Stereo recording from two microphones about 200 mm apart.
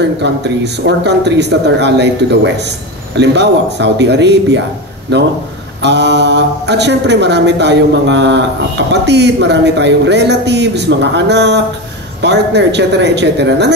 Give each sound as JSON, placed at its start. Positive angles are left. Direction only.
{"t": 0.2, "sound": "speech", "side_deg": -60}